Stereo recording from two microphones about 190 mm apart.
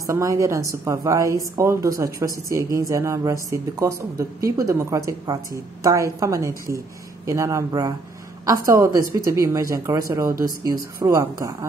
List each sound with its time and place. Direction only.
0.0 s a woman's voice: 20° right (ahead or behind)